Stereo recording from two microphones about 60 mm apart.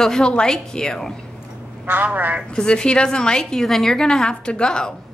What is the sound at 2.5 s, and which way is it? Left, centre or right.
A woman's voice, centre.